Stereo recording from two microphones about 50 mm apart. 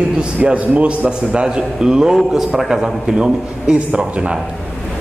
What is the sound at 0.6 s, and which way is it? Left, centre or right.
A man's voice, right.